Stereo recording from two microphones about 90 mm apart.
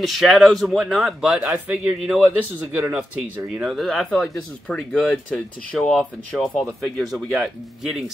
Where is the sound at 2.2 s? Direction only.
20° right (ahead or behind).